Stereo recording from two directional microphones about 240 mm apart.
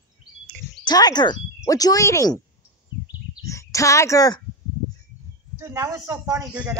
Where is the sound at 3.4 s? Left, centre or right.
Centre.